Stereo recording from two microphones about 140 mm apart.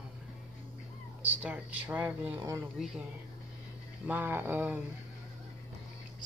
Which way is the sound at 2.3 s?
25° right (ahead or behind).